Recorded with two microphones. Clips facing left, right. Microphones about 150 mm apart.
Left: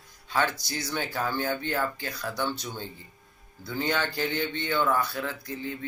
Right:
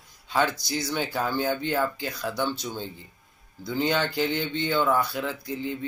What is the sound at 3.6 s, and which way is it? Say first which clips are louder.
Speech: right 3 dB; 15° right (ahead or behind).